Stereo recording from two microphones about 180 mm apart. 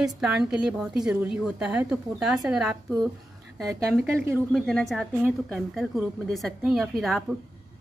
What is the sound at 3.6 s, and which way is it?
Speech, 15° right (ahead or behind).